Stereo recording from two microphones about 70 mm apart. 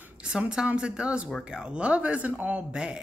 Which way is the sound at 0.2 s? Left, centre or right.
Centre.